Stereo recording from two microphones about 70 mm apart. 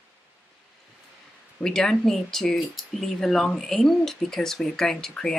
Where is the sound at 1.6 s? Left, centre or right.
Centre.